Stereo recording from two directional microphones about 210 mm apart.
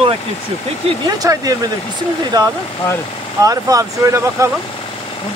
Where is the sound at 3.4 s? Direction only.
15° right (ahead or behind).